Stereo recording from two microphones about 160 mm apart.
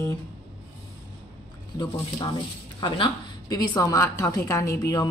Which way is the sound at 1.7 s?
25° left (ahead or behind).